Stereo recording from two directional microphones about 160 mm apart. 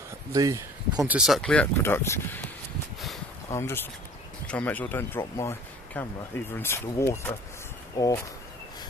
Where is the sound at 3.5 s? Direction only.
15° left (ahead or behind).